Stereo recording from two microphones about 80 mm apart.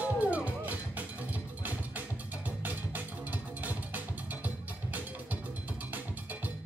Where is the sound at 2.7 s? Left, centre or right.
Right.